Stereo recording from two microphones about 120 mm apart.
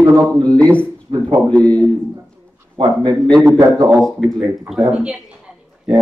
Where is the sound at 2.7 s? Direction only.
40° right (ahead or behind).